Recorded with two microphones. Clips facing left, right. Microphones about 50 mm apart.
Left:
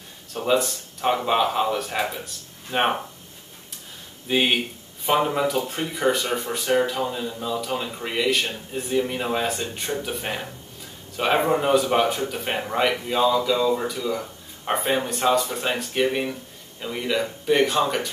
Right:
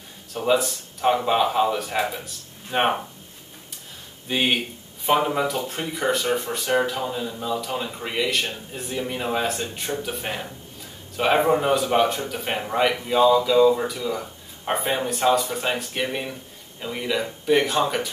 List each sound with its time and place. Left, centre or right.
0.3 s speech: centre
4.3 s speech: centre